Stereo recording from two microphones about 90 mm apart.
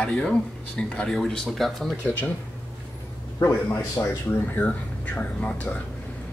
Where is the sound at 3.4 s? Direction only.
25° left (ahead or behind).